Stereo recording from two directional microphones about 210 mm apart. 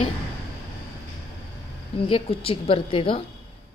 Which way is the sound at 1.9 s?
25° left (ahead or behind).